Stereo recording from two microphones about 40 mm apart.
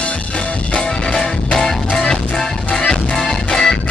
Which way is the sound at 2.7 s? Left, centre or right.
Left.